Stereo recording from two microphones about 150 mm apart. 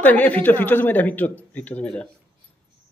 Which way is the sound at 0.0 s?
10° left (ahead or behind).